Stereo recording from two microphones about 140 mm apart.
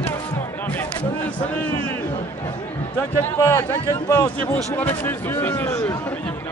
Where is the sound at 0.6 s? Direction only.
10° left (ahead or behind).